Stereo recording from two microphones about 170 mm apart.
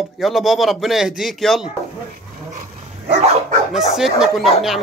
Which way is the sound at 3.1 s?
40° right (ahead or behind).